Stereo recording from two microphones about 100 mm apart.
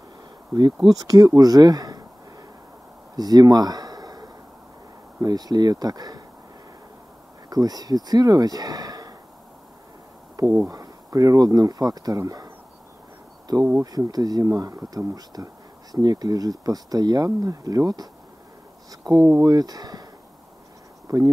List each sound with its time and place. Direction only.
0.8 s speech: 40° right (ahead or behind)
3.2 s a sound: 40° right (ahead or behind)
5.2 s speech: 40° right (ahead or behind)
7.4 s speech: 40° right (ahead or behind)
10.4 s speech: 40° right (ahead or behind)
13.5 s speech: 40° right (ahead or behind)
21.1 s speech: 40° right (ahead or behind)